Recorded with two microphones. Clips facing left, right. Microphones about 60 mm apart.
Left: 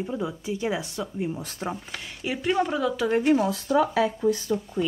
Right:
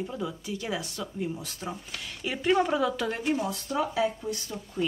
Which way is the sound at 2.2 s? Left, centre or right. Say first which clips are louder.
Even; centre.